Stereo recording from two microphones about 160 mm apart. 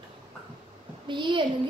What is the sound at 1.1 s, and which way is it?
Speech, 30° right (ahead or behind).